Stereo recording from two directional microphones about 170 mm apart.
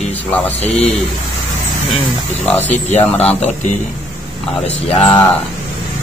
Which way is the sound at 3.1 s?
40° left (ahead or behind).